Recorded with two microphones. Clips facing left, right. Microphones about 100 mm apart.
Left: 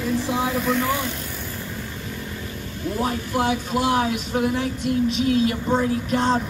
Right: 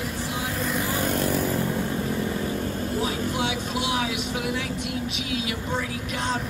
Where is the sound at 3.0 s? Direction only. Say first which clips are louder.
Left 5 dB; 45° left (ahead or behind).